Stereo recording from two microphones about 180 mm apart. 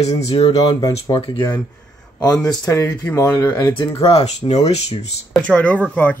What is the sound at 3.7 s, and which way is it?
Speech, 25° left (ahead or behind).